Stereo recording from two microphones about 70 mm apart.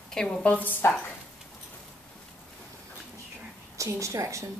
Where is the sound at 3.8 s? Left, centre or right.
Right.